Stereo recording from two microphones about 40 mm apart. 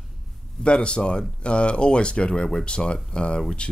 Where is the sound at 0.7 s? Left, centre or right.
Left.